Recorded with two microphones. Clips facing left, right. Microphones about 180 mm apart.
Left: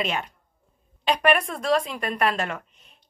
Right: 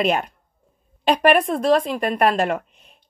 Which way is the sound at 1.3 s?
55° right (ahead or behind).